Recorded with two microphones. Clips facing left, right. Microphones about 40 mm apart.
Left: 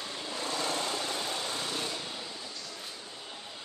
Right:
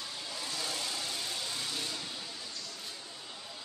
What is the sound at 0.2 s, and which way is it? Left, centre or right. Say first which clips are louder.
Vehicle: left 6 dB; left.